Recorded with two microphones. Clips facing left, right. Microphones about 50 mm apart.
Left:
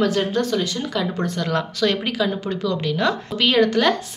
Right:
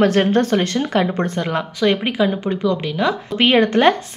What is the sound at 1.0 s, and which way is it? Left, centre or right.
A woman's voice, right.